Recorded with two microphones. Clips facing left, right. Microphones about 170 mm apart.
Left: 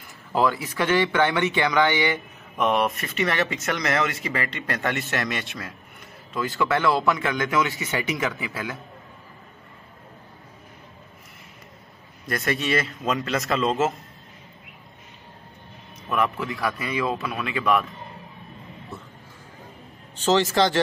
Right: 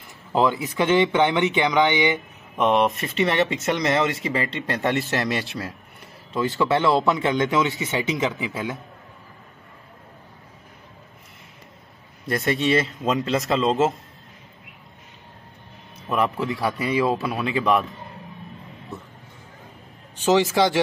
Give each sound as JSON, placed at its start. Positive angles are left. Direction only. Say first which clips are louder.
{"t": 0.3, "sound": "speech", "louder": "right 2 dB", "side_deg": -20}
{"t": 6.3, "sound": "speech", "louder": "right 3 dB", "side_deg": -25}
{"t": 12.4, "sound": "speech", "louder": "right 4 dB", "side_deg": -25}
{"t": 16.4, "sound": "speech", "louder": "right 4 dB", "side_deg": -20}
{"t": 20.2, "sound": "speech", "louder": "right 2 dB", "side_deg": -10}